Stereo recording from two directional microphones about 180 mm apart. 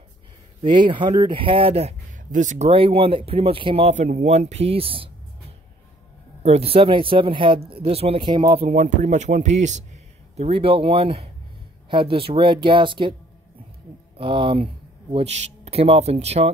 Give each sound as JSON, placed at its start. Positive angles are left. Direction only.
{"t": 0.6, "sound": "speech", "side_deg": -25}
{"t": 2.7, "sound": "speech", "side_deg": -30}
{"t": 6.4, "sound": "speech", "side_deg": -35}
{"t": 8.6, "sound": "speech", "side_deg": -40}
{"t": 14.1, "sound": "speech", "side_deg": -30}